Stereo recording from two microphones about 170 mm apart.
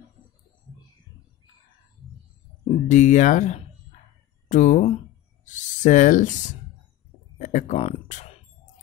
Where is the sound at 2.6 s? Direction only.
45° left (ahead or behind).